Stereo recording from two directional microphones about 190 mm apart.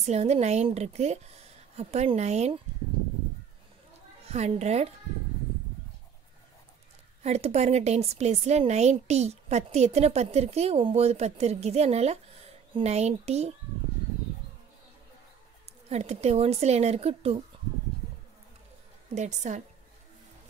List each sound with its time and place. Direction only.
0.0 s a woman's voice: 35° right (ahead or behind)
4.3 s a woman's voice: 35° right (ahead or behind)
7.2 s a woman's voice: 35° right (ahead or behind)
15.9 s a woman's voice: 35° right (ahead or behind)
19.1 s a woman's voice: 40° right (ahead or behind)